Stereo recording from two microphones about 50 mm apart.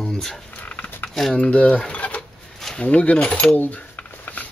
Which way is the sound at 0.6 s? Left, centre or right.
Left.